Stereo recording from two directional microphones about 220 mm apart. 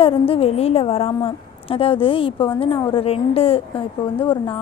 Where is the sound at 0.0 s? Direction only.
25° left (ahead or behind).